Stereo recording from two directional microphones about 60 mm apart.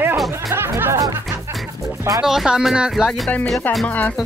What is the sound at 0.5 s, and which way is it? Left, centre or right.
Speech, right.